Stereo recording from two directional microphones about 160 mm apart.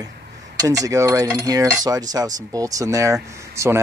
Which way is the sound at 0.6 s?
20° right (ahead or behind).